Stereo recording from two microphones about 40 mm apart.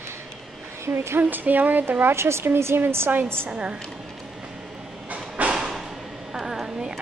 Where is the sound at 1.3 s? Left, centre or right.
Right.